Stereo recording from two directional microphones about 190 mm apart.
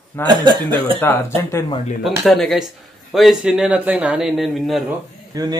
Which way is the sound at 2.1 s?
Centre (ahead or behind).